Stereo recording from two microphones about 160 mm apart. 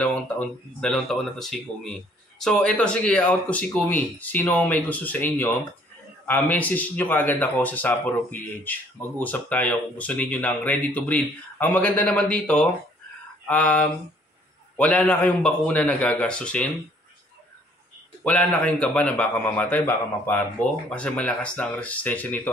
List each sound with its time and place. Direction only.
0.0 s speech: 10° left (ahead or behind)
18.2 s speech: 5° left (ahead or behind)